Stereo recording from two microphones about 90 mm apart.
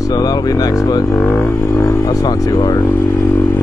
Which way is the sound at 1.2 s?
20° left (ahead or behind).